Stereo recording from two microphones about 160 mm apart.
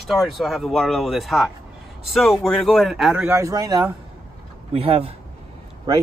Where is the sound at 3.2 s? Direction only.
20° right (ahead or behind).